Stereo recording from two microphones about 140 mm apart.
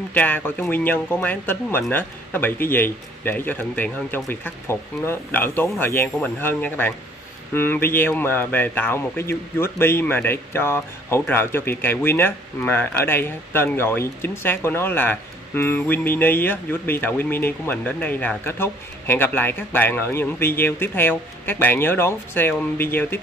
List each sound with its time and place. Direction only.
0.1 s speech: 10° left (ahead or behind)